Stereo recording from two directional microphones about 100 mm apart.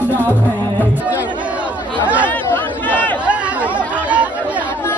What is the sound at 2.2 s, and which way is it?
Chatter, 20° left (ahead or behind).